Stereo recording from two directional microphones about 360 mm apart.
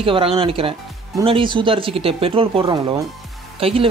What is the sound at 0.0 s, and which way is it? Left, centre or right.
Speech, centre.